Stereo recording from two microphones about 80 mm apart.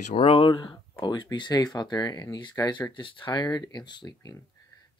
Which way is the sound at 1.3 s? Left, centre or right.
Left.